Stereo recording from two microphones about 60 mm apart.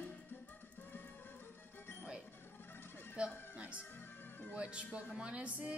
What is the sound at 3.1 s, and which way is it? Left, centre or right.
Speech, right.